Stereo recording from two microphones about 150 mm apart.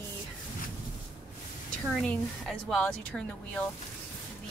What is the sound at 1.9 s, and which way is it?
Speech, centre (ahead or behind).